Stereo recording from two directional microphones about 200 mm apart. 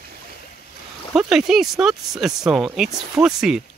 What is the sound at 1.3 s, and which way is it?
Speech, centre (ahead or behind).